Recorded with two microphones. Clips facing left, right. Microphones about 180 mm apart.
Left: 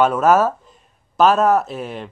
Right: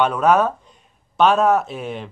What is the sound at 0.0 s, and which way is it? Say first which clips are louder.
Speech: left 2 dB; 5° left (ahead or behind).